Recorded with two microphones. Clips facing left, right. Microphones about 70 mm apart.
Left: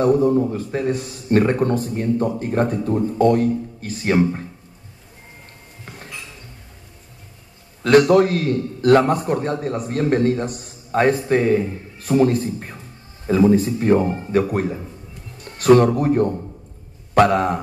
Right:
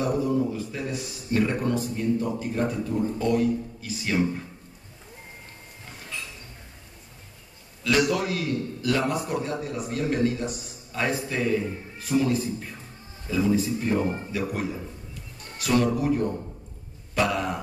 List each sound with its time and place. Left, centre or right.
0.0 s a man's voice: left
8.1 s a man's voice: left
17.1 s a sound: left